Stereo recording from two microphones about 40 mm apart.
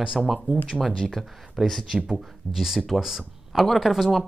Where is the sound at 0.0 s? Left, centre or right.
Centre.